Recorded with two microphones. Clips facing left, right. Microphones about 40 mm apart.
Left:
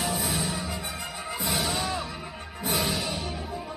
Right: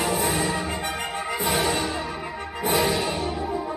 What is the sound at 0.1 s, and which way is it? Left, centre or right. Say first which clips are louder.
Music: right 6 dB; right.